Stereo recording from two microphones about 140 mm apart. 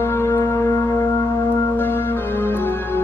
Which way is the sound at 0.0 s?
20° left (ahead or behind).